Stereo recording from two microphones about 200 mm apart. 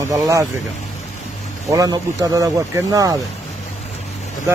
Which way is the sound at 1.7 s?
20° right (ahead or behind).